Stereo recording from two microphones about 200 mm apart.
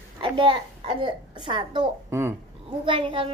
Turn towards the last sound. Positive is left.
turn(degrees=-25)  # may be behind; listen again after turning